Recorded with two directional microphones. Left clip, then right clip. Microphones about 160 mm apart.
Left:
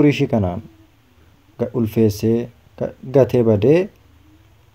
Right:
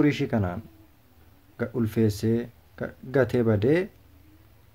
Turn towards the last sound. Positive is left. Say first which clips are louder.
# left 9 dB
turn(degrees=20)  # may be behind; listen again after turning